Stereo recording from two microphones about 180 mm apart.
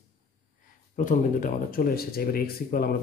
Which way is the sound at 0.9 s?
50° left (ahead or behind).